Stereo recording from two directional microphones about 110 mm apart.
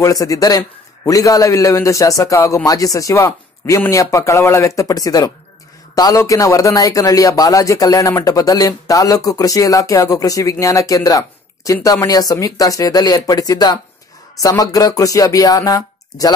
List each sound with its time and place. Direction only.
0.0 s speech: 30° left (ahead or behind)